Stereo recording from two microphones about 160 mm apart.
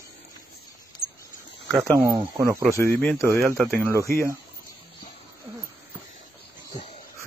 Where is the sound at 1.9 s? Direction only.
30° right (ahead or behind).